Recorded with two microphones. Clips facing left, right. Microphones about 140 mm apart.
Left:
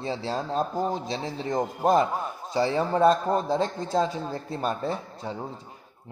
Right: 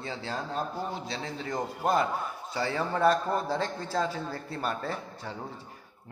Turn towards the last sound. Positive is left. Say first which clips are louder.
# left 5 dB
turn(degrees=30)  # may be behind; listen again after turning